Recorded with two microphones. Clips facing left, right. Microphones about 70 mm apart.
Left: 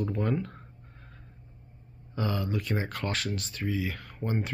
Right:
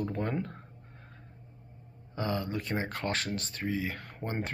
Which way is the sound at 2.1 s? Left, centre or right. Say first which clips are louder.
Left 1 dB; right.